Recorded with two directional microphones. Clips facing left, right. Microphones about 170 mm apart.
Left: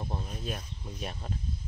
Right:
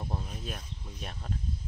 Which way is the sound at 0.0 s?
5° left (ahead or behind).